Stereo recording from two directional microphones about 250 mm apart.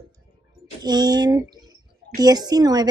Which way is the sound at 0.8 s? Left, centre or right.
Centre.